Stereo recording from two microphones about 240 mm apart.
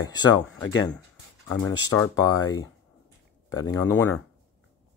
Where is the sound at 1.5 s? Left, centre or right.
Left.